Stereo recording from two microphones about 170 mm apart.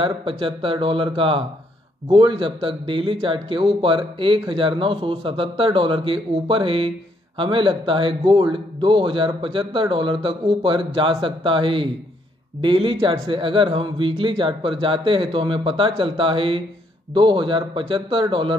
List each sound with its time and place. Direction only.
0.0 s a man's voice: 30° right (ahead or behind)